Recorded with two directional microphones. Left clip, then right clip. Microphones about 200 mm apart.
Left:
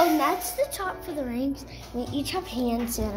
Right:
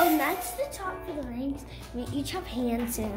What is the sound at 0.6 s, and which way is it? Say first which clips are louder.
Child singing: left 5 dB; 25° left (ahead or behind).